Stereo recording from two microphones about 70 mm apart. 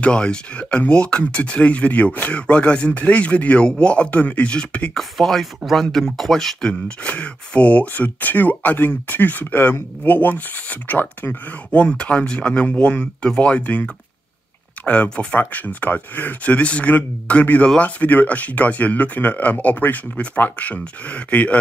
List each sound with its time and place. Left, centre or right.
0.0 s a man's voice: centre
4.9 s a man's voice: centre
14.9 s speech: centre